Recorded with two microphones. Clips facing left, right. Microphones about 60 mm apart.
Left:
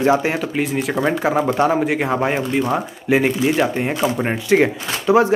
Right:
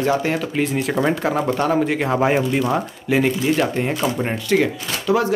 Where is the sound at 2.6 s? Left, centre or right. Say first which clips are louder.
Left 1 dB; centre.